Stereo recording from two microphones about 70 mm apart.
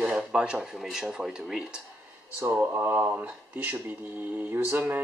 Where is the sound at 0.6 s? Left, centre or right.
Centre.